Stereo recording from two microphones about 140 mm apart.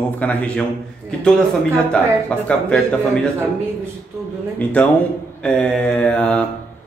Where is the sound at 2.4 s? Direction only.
5° left (ahead or behind).